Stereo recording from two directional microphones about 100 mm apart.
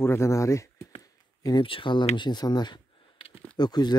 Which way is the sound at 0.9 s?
35° left (ahead or behind).